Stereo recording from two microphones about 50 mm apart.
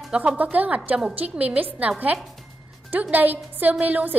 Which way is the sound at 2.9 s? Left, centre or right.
Right.